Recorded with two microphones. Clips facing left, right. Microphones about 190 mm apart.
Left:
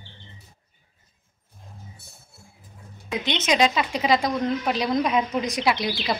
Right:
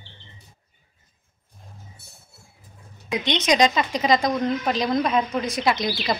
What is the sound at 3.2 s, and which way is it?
A woman's voice, 5° left (ahead or behind).